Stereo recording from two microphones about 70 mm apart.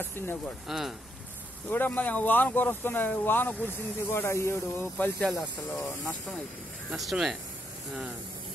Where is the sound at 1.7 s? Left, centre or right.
Left.